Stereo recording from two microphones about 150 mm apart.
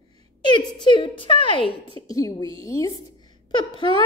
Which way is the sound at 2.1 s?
25° left (ahead or behind).